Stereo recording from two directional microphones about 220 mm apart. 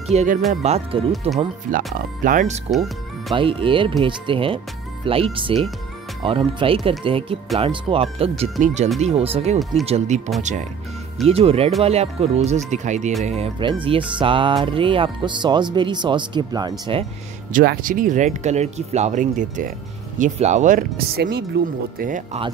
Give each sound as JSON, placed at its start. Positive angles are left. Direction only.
{"t": 0.0, "sound": "speech", "side_deg": -30}
{"t": 2.7, "sound": "speech", "side_deg": 0}
{"t": 3.3, "sound": "speech", "side_deg": -25}
{"t": 17.5, "sound": "speech", "side_deg": -35}